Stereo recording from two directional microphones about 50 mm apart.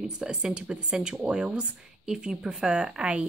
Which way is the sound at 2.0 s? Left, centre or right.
Centre.